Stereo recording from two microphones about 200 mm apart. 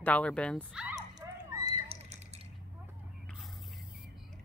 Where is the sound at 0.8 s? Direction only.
10° right (ahead or behind).